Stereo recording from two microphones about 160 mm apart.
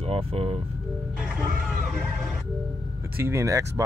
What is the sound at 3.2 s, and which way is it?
Speech, 15° right (ahead or behind).